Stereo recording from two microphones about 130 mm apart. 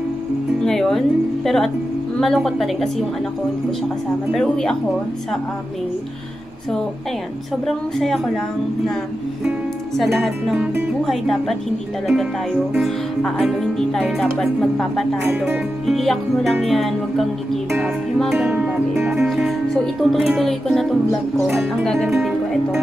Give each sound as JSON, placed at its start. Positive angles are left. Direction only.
{"t": 0.7, "sound": "a woman's voice", "side_deg": 0}
{"t": 4.3, "sound": "speech", "side_deg": 5}
{"t": 7.6, "sound": "speech", "side_deg": 0}
{"t": 9.9, "sound": "speech", "side_deg": 0}
{"t": 12.7, "sound": "speech", "side_deg": -5}
{"t": 15.2, "sound": "speech", "side_deg": -15}
{"t": 15.9, "sound": "speech", "side_deg": 0}